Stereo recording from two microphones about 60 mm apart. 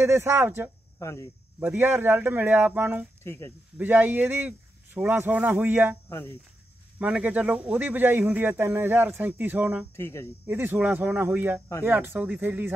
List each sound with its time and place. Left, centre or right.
0.0 s speech: right
0.9 s speech: left
1.6 s a man's voice: right
3.3 s speech: left
3.7 s a man's voice: right
4.5 s a sound: right
5.3 s speech: right
5.6 s a man's voice: right
6.0 s speech: left
7.0 s a man's voice: right
9.9 s speech: left
10.4 s a man's voice: right